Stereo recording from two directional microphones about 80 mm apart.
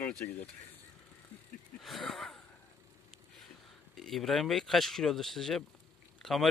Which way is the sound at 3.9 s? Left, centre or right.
Centre.